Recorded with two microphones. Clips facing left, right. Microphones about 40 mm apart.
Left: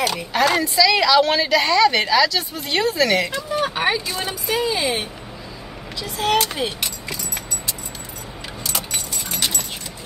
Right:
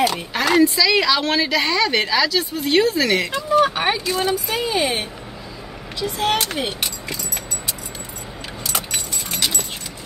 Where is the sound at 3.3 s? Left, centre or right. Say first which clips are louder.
Right 5 dB; right.